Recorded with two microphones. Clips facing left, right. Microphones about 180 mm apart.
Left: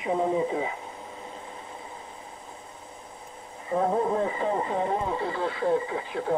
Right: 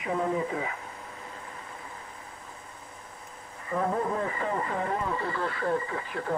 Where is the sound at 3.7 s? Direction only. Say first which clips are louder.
Left 4 dB; 20° left (ahead or behind).